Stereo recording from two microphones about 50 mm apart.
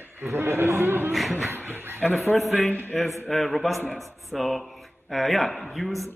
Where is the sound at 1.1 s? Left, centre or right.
Centre.